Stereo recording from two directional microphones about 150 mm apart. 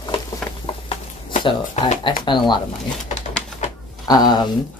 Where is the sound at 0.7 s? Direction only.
35° left (ahead or behind).